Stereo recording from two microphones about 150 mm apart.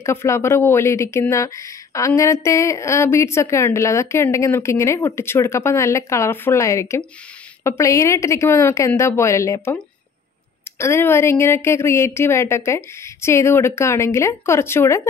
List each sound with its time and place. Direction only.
0.0 s speech: 20° left (ahead or behind)
10.8 s a woman's voice: 15° left (ahead or behind)